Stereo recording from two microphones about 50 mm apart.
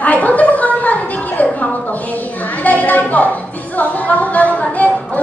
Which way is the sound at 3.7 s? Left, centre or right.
Left.